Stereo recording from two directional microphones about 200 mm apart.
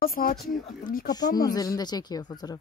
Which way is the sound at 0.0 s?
45° left (ahead or behind).